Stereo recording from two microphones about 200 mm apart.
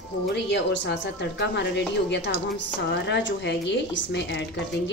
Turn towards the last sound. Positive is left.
turn(degrees=60)  # may be behind; listen again after turning